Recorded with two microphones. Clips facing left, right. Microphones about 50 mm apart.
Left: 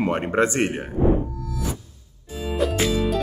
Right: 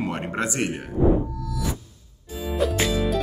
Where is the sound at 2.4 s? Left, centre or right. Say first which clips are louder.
Left 1 dB; centre.